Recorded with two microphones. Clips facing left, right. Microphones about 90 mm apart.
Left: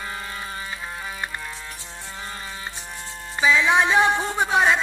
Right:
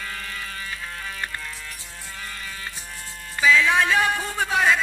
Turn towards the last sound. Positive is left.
turn(degrees=25)  # may be behind; listen again after turning